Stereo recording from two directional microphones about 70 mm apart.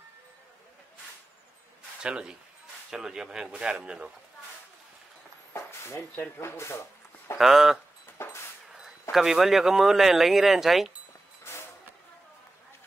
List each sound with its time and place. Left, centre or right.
2.0 s speech: centre
5.5 s a sound: left
6.1 s speech: left
6.4 s speech: left
7.3 s speech: centre
8.2 s vehicle: left
9.1 s speech: centre
11.5 s vehicle: left